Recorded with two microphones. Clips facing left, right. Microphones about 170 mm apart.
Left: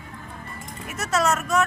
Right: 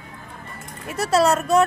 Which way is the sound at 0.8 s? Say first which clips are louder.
Right 5 dB; 30° right (ahead or behind).